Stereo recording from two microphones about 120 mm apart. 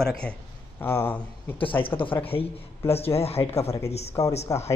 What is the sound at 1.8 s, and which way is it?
Speech, 45° left (ahead or behind).